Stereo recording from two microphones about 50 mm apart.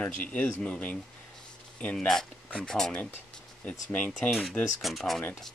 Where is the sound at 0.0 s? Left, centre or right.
Left.